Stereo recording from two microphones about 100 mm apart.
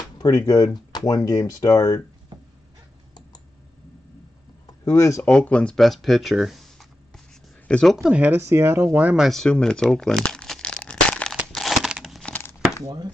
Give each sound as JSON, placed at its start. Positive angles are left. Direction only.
{"t": 0.2, "sound": "speech", "side_deg": 35}
{"t": 4.6, "sound": "speech", "side_deg": 35}
{"t": 5.2, "sound": "speech", "side_deg": 15}
{"t": 5.8, "sound": "speech", "side_deg": 0}
{"t": 8.1, "sound": "speech", "side_deg": -20}
{"t": 9.2, "sound": "crumpling", "side_deg": 5}
{"t": 11.4, "sound": "a sound", "side_deg": 0}
{"t": 12.4, "sound": "a sound", "side_deg": 20}
{"t": 12.8, "sound": "speech", "side_deg": -45}